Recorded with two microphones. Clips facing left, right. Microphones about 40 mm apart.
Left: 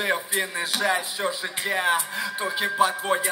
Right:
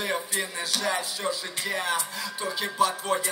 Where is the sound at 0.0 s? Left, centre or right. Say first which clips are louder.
Left 4 dB; left.